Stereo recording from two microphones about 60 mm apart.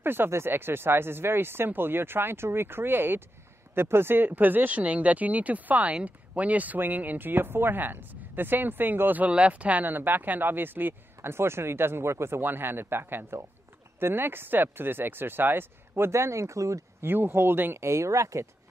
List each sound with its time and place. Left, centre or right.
0.0 s speech: right
9.3 s speech: right
12.4 s speech: right
17.0 s speech: right
17.7 s speech: right